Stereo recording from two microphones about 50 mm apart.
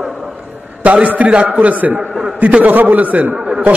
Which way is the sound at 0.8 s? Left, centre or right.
Right.